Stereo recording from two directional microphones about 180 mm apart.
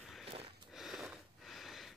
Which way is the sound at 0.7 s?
Centre (ahead or behind).